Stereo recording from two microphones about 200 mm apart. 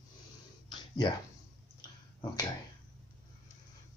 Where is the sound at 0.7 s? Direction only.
20° left (ahead or behind).